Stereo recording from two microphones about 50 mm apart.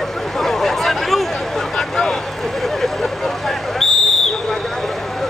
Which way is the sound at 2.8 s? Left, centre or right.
Centre.